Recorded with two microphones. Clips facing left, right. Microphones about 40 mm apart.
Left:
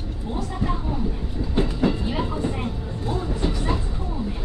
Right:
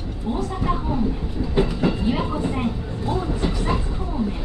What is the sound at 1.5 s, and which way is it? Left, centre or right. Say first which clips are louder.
Train: right 1 dB; centre.